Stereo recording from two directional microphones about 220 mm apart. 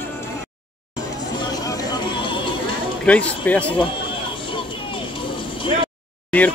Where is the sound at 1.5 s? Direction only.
15° left (ahead or behind).